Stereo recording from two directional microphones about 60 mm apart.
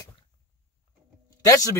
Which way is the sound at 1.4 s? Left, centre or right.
Left.